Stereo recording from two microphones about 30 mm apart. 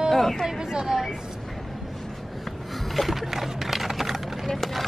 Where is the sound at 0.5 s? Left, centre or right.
Centre.